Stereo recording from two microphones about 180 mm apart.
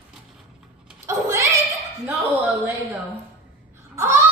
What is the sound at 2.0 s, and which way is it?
Speech, centre (ahead or behind).